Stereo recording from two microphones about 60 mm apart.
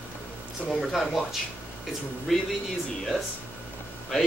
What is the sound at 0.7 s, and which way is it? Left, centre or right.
Speech, centre.